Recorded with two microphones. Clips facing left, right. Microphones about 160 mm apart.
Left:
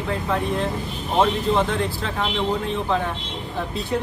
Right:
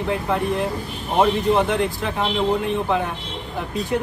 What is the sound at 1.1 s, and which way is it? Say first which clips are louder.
Speech: right 2 dB; 20° right (ahead or behind).